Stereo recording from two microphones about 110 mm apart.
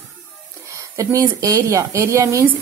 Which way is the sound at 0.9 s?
30° right (ahead or behind).